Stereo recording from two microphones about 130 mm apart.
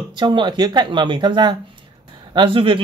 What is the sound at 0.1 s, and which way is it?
Speech, 35° right (ahead or behind).